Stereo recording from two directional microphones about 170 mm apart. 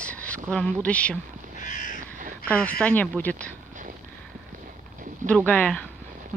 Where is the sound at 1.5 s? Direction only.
45° left (ahead or behind).